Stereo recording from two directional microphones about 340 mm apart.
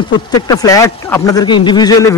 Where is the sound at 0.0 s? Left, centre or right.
Centre.